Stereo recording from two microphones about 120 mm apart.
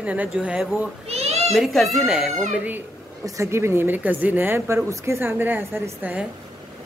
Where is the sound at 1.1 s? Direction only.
60° right (ahead or behind).